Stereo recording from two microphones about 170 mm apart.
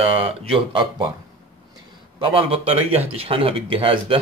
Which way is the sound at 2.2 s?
30° right (ahead or behind).